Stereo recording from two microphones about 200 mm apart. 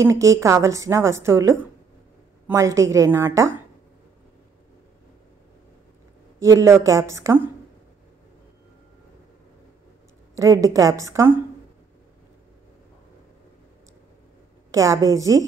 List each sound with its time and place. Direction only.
0.0 s a woman's voice: 15° right (ahead or behind)
6.4 s a woman's voice: 15° right (ahead or behind)
10.3 s a woman's voice: 15° right (ahead or behind)
14.7 s a woman's voice: 15° right (ahead or behind)